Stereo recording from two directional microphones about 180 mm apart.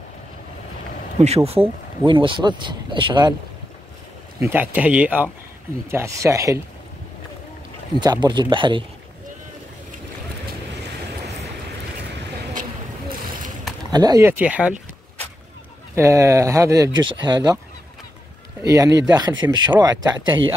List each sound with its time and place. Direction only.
1.2 s speech: 35° right (ahead or behind)
4.4 s speech: 10° right (ahead or behind)
8.0 s speech: 25° right (ahead or behind)
13.9 s speech: 20° right (ahead or behind)
14.3 s speech: 10° right (ahead or behind)
15.9 s speech: 15° right (ahead or behind)
18.6 s speech: 20° right (ahead or behind)